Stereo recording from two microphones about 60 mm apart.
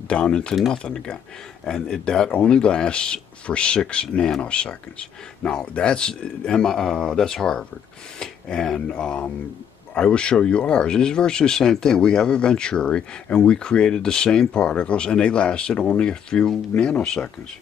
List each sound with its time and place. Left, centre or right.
0.1 s speech: centre